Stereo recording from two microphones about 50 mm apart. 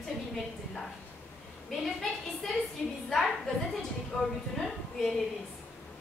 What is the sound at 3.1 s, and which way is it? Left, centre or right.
A woman's voice, centre.